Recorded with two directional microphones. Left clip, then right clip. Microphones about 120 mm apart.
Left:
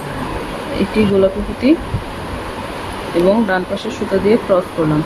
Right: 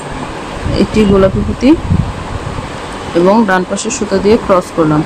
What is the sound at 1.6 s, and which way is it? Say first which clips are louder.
Speech: right 4 dB; 25° right (ahead or behind).